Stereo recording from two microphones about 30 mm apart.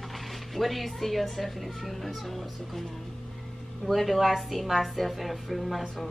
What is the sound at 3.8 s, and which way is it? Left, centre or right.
A woman's voice, centre.